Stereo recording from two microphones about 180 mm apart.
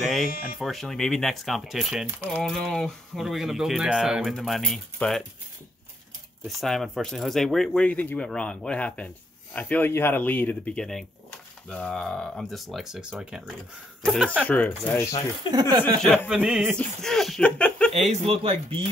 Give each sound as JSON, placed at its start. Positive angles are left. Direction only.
{"t": 0.0, "sound": "music", "side_deg": 0}
{"t": 0.6, "sound": "speech", "side_deg": 0}
{"t": 2.4, "sound": "speech", "side_deg": 0}
{"t": 6.6, "sound": "speech", "side_deg": 0}
{"t": 16.3, "sound": "speech", "side_deg": -5}
{"t": 18.1, "sound": "speech", "side_deg": -35}